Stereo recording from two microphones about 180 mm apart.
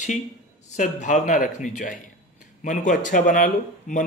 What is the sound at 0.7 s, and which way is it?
A man's voice, 45° left (ahead or behind).